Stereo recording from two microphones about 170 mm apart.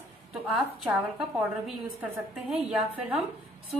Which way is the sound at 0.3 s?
Centre (ahead or behind).